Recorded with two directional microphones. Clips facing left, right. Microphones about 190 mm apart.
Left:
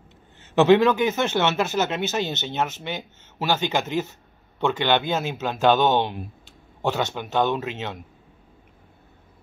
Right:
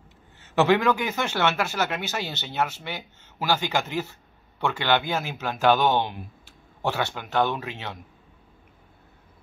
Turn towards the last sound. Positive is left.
turn(degrees=20)  # may be behind; listen again after turning